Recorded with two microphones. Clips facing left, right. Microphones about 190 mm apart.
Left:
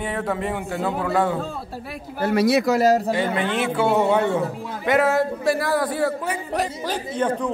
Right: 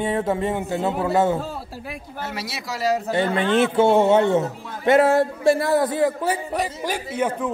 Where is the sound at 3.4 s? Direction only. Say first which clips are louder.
Right 5 dB; 10° left (ahead or behind).